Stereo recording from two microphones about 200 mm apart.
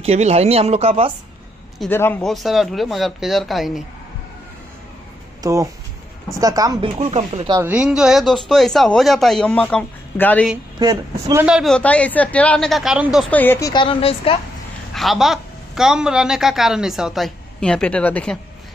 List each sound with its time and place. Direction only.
0.0 s speech: 35° right (ahead or behind)
1.8 s speech: 10° left (ahead or behind)
5.4 s speech: 15° right (ahead or behind)
7.0 s speech: 30° right (ahead or behind)
7.5 s speech: 5° right (ahead or behind); by 10.5 s 10° left (ahead or behind)
10.8 s speech: 20° right (ahead or behind)
11.4 s speech: centre (ahead or behind); by 14.4 s 25° left (ahead or behind)
15.0 s speech: centre (ahead or behind)